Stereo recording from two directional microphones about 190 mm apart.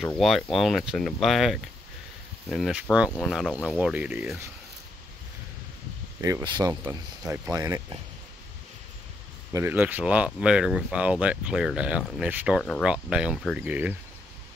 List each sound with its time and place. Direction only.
0.0 s speech: centre (ahead or behind)
6.2 s speech: 20° right (ahead or behind)
9.5 s speech: 10° right (ahead or behind)